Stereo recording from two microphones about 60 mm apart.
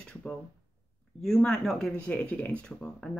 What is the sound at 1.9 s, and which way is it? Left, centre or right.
Speech, centre.